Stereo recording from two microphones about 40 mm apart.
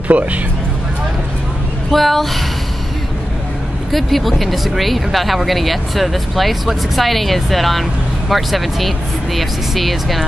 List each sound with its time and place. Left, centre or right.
0.1 s speech: right
1.9 s speech: centre
3.9 s speech: centre